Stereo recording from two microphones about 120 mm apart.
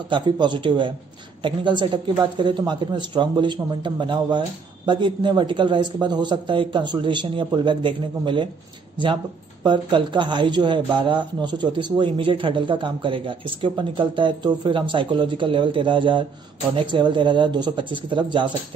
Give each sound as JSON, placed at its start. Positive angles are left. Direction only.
{"t": 0.1, "sound": "speech", "side_deg": -40}